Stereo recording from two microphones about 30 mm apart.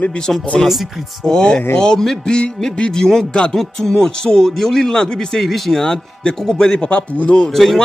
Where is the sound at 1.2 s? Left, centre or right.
Left; by 5.8 s centre.